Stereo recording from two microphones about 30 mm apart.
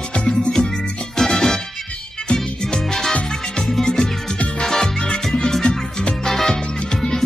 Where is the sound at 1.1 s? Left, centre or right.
Centre.